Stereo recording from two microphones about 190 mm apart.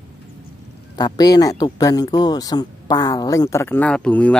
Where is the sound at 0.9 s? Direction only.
20° left (ahead or behind).